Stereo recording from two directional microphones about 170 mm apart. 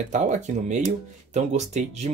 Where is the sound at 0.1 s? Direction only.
45° right (ahead or behind).